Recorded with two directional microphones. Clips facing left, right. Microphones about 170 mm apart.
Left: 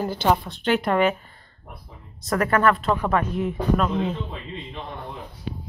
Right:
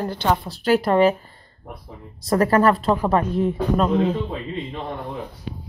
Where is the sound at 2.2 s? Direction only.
30° right (ahead or behind).